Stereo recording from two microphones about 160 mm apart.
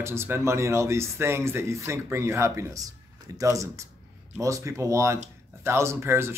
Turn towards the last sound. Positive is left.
turn(degrees=-15)  # may be behind; listen again after turning